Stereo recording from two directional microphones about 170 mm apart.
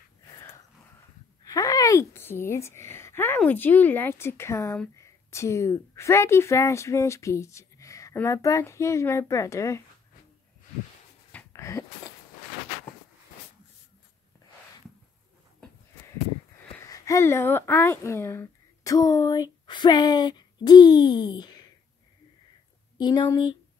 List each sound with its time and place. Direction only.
1.4 s speech: 20° left (ahead or behind)
11.3 s a sound: 15° left (ahead or behind)
16.7 s speech: 20° left (ahead or behind)
22.9 s speech: 25° left (ahead or behind)